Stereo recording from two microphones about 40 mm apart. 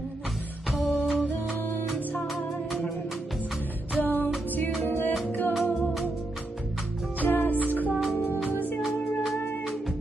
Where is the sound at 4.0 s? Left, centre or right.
Left.